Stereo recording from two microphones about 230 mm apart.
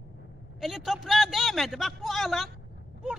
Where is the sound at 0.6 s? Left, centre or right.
Centre.